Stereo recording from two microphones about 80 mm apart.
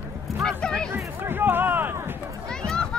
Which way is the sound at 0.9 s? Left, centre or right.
Right.